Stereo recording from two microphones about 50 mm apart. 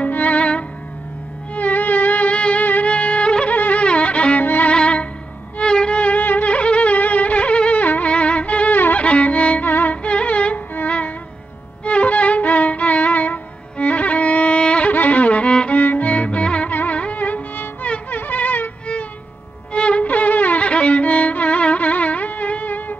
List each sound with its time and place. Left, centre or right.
0.0 s music: left
2.9 s music: left
3.5 s music: left
4.4 s violin: left
4.7 s music: left
8.7 s music: left
9.0 s music: left
9.7 s music: left
10.0 s music: left
11.8 s violin: left
14.9 s music: left
15.8 s music: left